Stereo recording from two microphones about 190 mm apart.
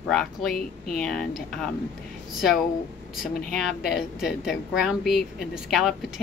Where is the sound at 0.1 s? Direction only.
Centre (ahead or behind).